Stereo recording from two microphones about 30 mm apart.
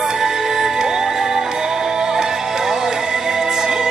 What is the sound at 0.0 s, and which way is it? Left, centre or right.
Music, right.